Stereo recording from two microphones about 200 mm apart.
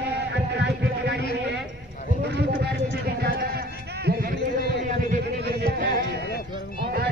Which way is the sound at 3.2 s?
50° right (ahead or behind).